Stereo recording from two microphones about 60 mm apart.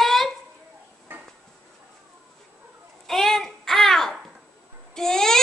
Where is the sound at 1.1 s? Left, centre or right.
Right.